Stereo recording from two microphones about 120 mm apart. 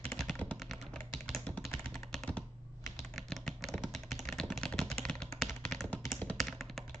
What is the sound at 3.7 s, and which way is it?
Typing, 5° left (ahead or behind).